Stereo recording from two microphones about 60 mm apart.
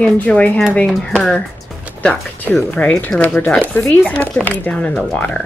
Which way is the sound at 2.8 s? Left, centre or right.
Left.